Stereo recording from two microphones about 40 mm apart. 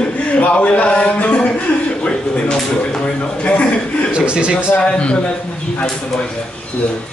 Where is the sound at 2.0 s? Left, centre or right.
Left.